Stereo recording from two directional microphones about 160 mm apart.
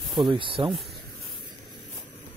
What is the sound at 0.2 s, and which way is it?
Speech, 30° right (ahead or behind).